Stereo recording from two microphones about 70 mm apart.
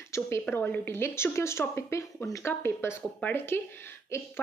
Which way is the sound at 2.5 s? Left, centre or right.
Left.